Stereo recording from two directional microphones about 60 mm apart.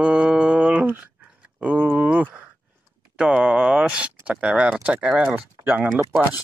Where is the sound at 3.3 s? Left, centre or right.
Centre.